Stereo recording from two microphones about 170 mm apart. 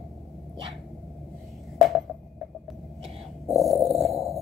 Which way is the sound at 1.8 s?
Centre (ahead or behind).